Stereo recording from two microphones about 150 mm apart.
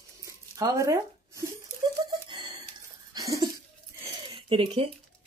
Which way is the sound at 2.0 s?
30° right (ahead or behind).